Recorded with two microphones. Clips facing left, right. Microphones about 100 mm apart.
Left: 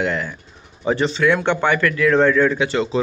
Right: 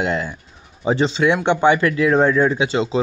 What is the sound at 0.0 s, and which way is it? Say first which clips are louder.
Speech: right 1 dB; 20° right (ahead or behind).